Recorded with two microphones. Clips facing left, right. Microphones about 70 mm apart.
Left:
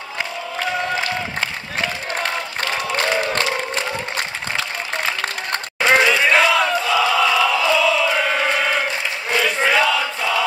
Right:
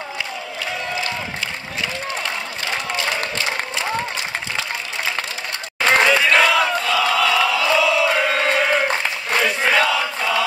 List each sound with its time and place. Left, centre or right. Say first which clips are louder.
1.4 s crowd: left 3 dB; left
5.9 s battle cry: even; centre
9.4 s chant: even; centre